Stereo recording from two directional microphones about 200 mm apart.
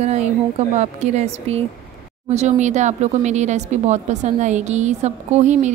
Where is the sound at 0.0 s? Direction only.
35° right (ahead or behind).